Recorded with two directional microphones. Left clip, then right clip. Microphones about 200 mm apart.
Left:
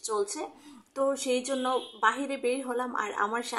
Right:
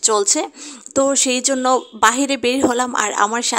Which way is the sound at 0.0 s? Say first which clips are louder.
Right 14 dB; 40° right (ahead or behind).